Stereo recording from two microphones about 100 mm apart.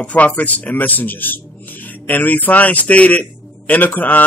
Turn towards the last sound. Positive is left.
turn(degrees=15)  # may be behind; listen again after turning